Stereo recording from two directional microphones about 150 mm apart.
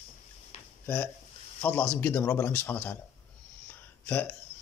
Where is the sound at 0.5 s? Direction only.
40° left (ahead or behind).